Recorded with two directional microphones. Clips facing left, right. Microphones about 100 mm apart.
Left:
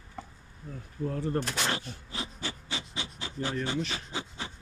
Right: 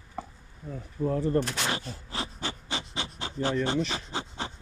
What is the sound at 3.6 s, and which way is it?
Speech, 65° right (ahead or behind).